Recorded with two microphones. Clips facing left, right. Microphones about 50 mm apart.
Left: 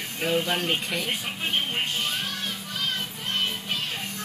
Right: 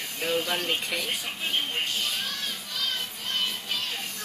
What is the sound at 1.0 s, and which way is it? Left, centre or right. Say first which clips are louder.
Music: left 2 dB; left.